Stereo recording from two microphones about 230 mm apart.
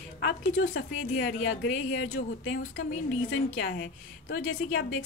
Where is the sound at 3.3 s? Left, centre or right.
Left.